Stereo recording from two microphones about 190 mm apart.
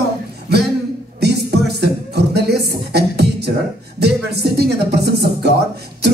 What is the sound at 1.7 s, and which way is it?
Music, 60° right (ahead or behind).